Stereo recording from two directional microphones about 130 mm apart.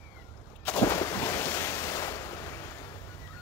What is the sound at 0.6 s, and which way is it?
Waves, 15° left (ahead or behind).